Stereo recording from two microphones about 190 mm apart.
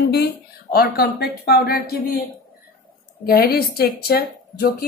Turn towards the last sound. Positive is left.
turn(degrees=55)  # may be behind; listen again after turning